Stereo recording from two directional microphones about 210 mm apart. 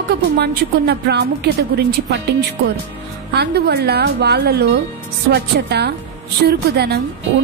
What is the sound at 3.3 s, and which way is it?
Speech, 50° right (ahead or behind).